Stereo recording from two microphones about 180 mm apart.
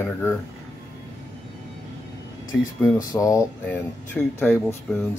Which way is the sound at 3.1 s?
15° left (ahead or behind).